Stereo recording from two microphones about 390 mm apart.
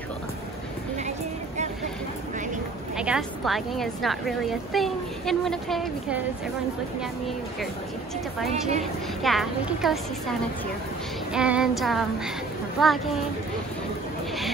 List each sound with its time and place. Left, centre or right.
3.0 s a woman's voice: centre
8.5 s a woman's voice: centre
9.2 s a woman's voice: centre
11.3 s a woman's voice: centre